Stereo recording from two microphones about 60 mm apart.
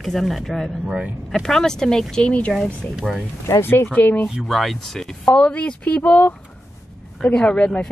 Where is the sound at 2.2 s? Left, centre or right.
Left.